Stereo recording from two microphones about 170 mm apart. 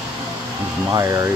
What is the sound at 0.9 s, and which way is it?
Speech, 20° right (ahead or behind).